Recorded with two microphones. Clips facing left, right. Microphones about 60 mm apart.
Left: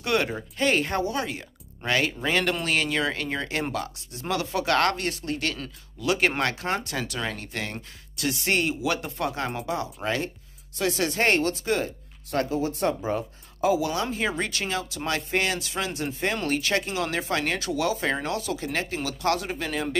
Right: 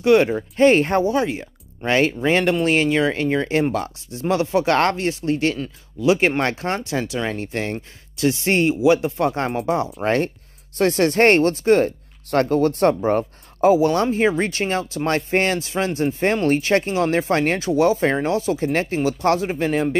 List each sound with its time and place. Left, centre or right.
0.0 s speech: right
0.6 s speech: right
5.6 s speech: centre
6.9 s speech: centre
7.3 s speech: right
12.3 s speech: right